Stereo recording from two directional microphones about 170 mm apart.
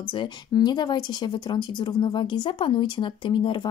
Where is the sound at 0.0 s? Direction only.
30° left (ahead or behind).